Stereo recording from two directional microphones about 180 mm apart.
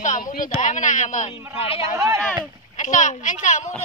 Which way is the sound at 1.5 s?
30° left (ahead or behind).